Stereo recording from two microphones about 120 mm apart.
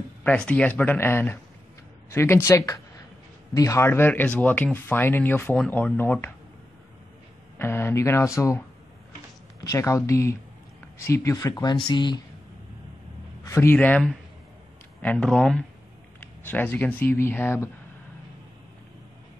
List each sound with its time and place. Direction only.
0.2 s speech: 10° left (ahead or behind)
7.5 s speech: 20° left (ahead or behind); by 12.2 s 40° left (ahead or behind)
13.4 s a man's voice: 20° left (ahead or behind)
13.7 s speech: 10° left (ahead or behind)
16.2 s speech: 15° left (ahead or behind)